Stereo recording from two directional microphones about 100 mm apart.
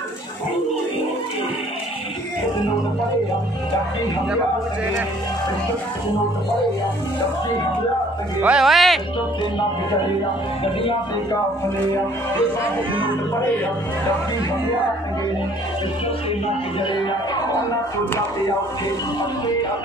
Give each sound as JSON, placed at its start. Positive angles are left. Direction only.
{"t": 8.4, "sound": "speech", "side_deg": -10}
{"t": 8.6, "sound": "speech", "side_deg": 0}
{"t": 10.6, "sound": "music", "side_deg": 65}